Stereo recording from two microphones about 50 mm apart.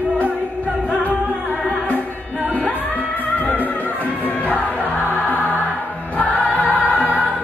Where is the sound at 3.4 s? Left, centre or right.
Left.